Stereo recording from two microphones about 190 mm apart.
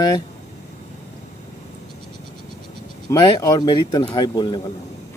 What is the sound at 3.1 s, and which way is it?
Speech, 20° left (ahead or behind).